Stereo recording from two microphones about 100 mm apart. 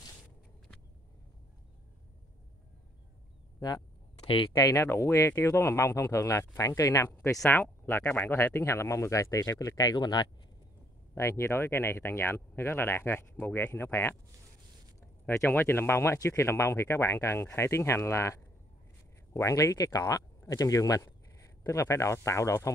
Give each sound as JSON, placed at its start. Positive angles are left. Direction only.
{"t": 3.5, "sound": "speech", "side_deg": 40}
{"t": 4.2, "sound": "a sound", "side_deg": 60}
{"t": 4.6, "sound": "speech", "side_deg": 35}
{"t": 7.4, "sound": "speech", "side_deg": 20}
{"t": 11.1, "sound": "speech", "side_deg": 30}
{"t": 15.2, "sound": "speech", "side_deg": 25}